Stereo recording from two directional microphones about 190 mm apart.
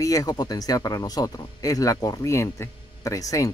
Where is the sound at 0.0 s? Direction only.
20° left (ahead or behind).